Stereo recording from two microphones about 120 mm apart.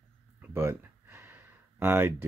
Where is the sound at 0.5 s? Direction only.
20° right (ahead or behind).